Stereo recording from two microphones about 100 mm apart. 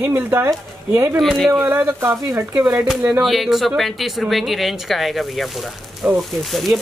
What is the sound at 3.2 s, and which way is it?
Speech, centre (ahead or behind).